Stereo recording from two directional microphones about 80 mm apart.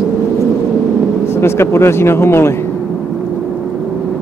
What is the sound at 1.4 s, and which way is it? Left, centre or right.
Speech, left.